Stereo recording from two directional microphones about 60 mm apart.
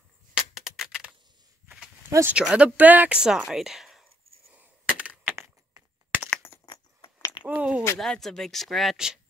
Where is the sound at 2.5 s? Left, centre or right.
Centre.